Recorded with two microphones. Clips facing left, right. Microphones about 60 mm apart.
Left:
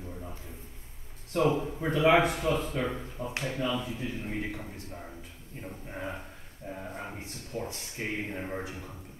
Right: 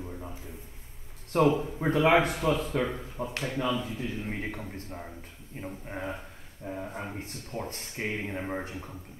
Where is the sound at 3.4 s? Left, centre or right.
Right.